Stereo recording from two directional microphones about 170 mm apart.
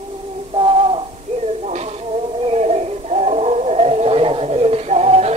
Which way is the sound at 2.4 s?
40° right (ahead or behind).